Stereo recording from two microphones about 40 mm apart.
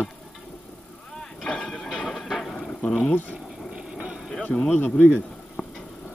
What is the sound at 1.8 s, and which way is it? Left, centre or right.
Train, centre.